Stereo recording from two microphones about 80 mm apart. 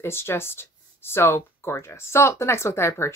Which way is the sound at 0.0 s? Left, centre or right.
Left.